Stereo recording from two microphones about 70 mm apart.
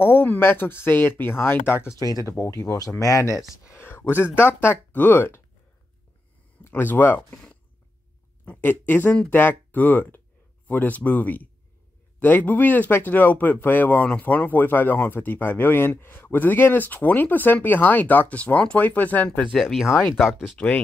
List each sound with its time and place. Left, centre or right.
0.0 s speech: left
3.0 s speech: left
3.3 s speech: centre
3.7 s speech: left
6.7 s speech: left
8.5 s speech: left
19.5 s speech: centre
20.5 s speech: centre